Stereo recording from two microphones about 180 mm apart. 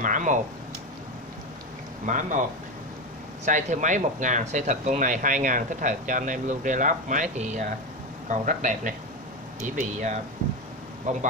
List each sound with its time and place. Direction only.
0.0 s speech: 45° right (ahead or behind)
2.0 s speech: 45° right (ahead or behind)
3.4 s speech: 45° right (ahead or behind)